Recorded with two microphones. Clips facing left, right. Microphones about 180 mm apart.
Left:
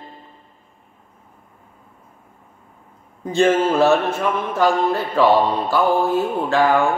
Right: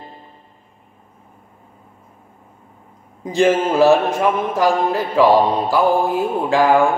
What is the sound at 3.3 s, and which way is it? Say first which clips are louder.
Mantra: right 1 dB; 10° right (ahead or behind).